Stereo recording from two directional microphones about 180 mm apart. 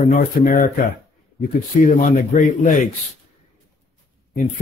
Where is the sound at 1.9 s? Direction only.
50° left (ahead or behind).